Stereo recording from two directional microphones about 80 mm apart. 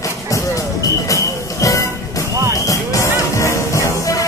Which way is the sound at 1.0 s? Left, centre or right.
Left.